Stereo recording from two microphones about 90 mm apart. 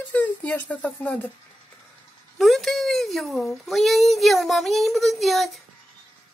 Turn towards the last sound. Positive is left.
turn(degrees=0)  # may be behind; listen again after turning